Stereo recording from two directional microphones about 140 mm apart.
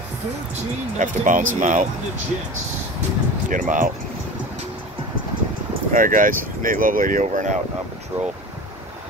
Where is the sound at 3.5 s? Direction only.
70° right (ahead or behind).